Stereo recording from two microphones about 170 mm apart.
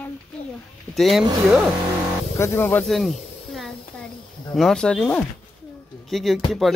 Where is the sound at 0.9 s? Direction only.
Centre (ahead or behind).